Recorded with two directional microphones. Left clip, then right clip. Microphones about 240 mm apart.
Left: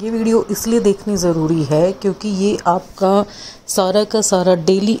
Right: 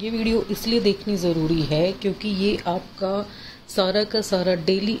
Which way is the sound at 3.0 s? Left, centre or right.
Left.